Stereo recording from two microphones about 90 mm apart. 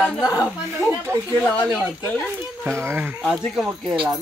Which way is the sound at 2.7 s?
30° right (ahead or behind).